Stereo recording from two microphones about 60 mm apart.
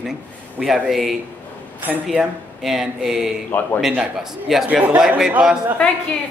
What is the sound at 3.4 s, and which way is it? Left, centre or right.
Speech, left.